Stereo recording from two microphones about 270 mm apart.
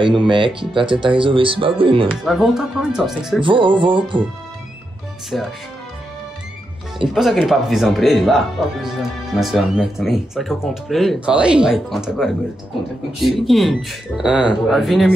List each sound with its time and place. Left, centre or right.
0.2 s music: centre
0.6 s speech: centre
2.2 s speech: centre
3.4 s music: centre
5.3 s speech: centre
7.2 s speech: centre